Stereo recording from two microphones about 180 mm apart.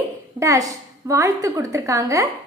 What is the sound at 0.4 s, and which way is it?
Speech, 15° right (ahead or behind).